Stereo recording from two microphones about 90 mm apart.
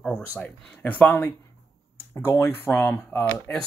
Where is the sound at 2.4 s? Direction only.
25° left (ahead or behind).